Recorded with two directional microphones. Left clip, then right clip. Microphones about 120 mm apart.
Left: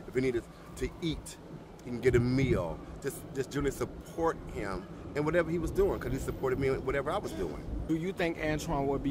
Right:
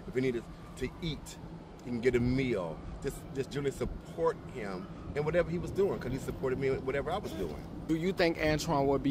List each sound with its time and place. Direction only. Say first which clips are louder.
0.1 s a man's voice: left 2 dB; 30° left (ahead or behind)
7.9 s speech: right 3 dB; 35° right (ahead or behind)